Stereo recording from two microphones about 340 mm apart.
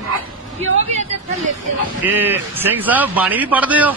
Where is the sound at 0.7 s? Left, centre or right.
Right.